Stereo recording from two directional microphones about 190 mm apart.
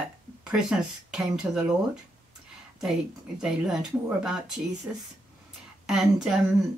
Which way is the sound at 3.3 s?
5° right (ahead or behind).